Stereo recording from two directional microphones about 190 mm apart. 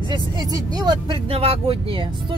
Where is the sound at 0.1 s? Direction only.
20° right (ahead or behind).